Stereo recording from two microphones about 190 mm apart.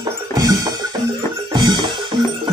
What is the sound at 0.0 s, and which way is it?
Music, 20° right (ahead or behind).